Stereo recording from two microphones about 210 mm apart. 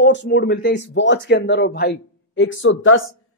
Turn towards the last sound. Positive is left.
turn(degrees=65)  # may be behind; listen again after turning